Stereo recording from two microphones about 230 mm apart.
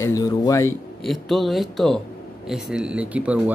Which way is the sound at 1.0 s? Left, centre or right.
Centre.